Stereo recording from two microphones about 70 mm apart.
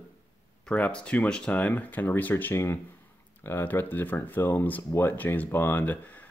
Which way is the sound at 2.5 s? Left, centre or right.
Left.